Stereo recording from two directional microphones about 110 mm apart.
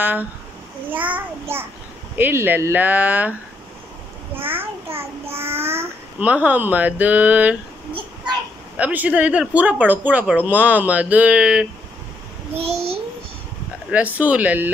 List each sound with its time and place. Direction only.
0.0 s speech: 15° right (ahead or behind)
4.5 s child singing: 20° right (ahead or behind)
6.1 s speech: 15° right (ahead or behind)
8.7 s speech: 15° right (ahead or behind)
12.5 s a child's voice: 65° right (ahead or behind)
13.8 s speech: 15° right (ahead or behind)